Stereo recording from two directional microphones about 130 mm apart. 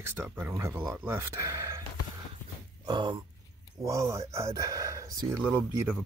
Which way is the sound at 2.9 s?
35° right (ahead or behind).